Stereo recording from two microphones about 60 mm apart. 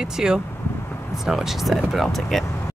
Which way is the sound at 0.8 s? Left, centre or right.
Left.